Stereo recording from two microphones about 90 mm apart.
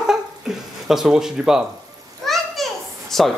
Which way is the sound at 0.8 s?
5° right (ahead or behind).